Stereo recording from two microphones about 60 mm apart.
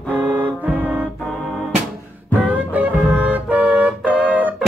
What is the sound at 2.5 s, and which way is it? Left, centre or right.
Music, right.